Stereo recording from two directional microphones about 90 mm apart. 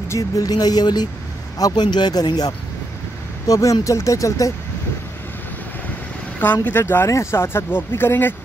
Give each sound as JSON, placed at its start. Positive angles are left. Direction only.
{"t": 0.1, "sound": "speech", "side_deg": 45}
{"t": 3.4, "sound": "speech", "side_deg": 35}
{"t": 6.4, "sound": "speech", "side_deg": 20}